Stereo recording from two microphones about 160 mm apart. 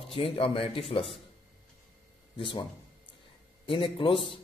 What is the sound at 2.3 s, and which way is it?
Speech, 30° left (ahead or behind).